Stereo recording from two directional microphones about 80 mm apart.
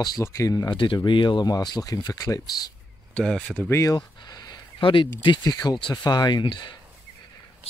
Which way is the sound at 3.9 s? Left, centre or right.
Left.